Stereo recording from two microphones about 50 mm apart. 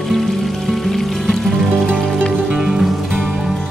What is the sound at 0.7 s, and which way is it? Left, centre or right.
Music, centre.